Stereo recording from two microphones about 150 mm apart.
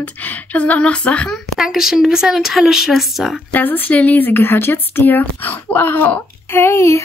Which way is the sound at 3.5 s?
10° left (ahead or behind).